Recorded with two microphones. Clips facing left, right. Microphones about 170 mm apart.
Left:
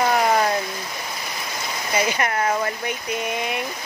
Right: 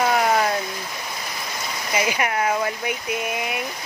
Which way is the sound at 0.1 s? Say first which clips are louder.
Left 1 dB; centre (ahead or behind).